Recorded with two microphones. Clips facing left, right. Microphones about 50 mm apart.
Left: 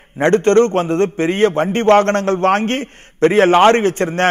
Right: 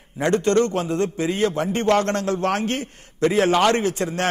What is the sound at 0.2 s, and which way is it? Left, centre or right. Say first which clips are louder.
A man's voice: left 7 dB; left.